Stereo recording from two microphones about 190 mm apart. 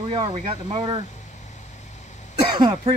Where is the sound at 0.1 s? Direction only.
30° right (ahead or behind).